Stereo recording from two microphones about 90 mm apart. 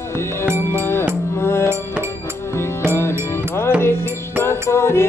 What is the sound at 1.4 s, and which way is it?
Music, 30° left (ahead or behind).